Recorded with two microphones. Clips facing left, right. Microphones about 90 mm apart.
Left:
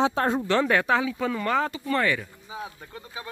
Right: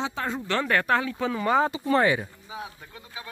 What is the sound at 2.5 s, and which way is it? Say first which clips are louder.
Speech: left 4 dB; 25° left (ahead or behind).